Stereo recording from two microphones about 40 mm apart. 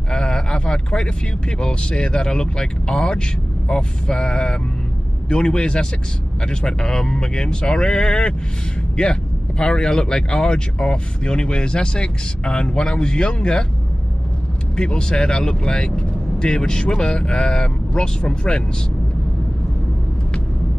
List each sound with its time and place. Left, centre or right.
0.1 s a sound: centre
1.6 s speech: left
14.8 s speech: left